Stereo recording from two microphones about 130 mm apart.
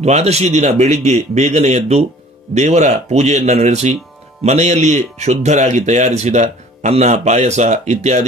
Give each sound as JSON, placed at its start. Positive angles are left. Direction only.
{"t": 0.0, "sound": "speech", "side_deg": -55}